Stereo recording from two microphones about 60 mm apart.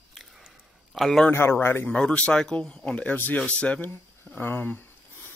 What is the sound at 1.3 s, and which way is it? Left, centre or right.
Speech, left.